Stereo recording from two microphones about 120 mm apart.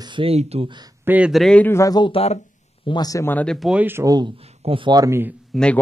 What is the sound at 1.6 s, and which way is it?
Speech, 25° left (ahead or behind).